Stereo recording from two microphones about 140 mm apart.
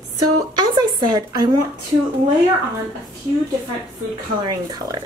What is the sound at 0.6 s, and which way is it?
A woman's voice, 30° right (ahead or behind).